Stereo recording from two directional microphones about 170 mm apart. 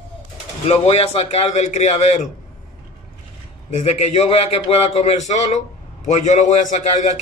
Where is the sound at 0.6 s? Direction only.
35° left (ahead or behind).